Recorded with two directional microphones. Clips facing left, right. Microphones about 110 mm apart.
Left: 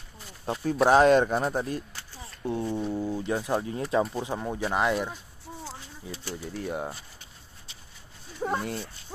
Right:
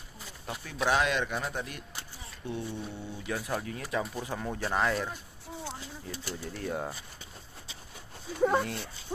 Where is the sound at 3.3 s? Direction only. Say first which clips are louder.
Left 6 dB; 25° left (ahead or behind); by 7.0 s 5° left (ahead or behind).